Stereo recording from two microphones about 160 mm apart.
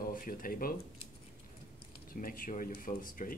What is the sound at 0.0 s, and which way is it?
Speech, 60° left (ahead or behind).